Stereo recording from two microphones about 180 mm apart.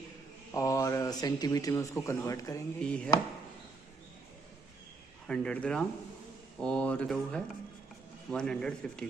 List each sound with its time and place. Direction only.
0.5 s speech: 20° left (ahead or behind)
2.8 s speech: 5° left (ahead or behind)
5.2 s speech: 5° left (ahead or behind)